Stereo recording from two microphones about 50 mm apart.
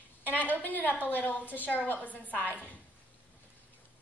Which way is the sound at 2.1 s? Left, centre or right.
Right.